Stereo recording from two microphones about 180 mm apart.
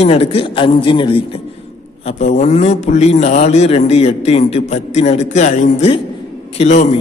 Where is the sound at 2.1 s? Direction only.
40° left (ahead or behind).